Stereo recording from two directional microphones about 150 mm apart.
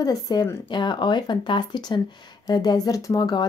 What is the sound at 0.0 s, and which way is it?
A woman's voice, 25° left (ahead or behind).